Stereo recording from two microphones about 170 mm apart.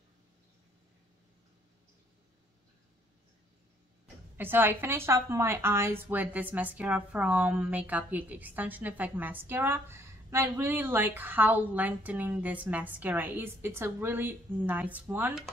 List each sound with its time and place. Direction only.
4.4 s a woman's voice: 10° right (ahead or behind)